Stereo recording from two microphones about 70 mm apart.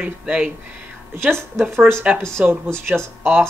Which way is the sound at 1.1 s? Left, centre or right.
Right.